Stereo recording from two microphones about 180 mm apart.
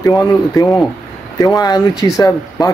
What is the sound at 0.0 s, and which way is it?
Speech, 20° left (ahead or behind).